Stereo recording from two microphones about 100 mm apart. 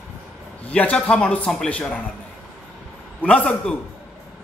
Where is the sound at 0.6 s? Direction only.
15° left (ahead or behind).